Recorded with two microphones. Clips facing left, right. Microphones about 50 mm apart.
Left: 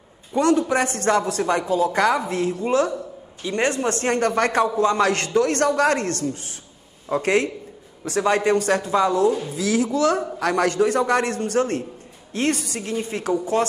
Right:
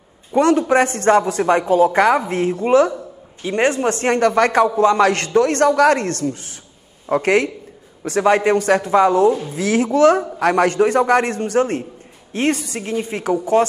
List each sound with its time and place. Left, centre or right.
0.3 s a woman's voice: right